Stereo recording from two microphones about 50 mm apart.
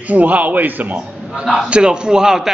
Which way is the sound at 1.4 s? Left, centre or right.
Centre.